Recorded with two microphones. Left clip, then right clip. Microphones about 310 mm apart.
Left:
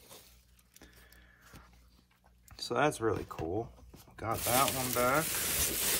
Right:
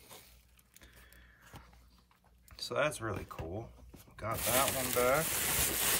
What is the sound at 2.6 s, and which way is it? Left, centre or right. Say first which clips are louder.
Speech: left 3 dB; centre.